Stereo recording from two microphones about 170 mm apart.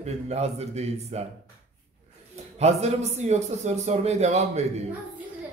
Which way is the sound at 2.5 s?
40° right (ahead or behind).